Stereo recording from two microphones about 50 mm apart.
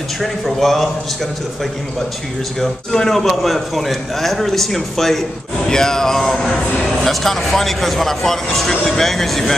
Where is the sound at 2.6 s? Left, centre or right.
Centre.